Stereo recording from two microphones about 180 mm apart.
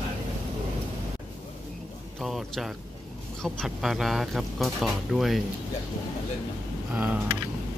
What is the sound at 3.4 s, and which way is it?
Speech, centre (ahead or behind).